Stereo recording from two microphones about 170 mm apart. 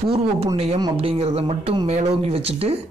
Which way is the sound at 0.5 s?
30° right (ahead or behind).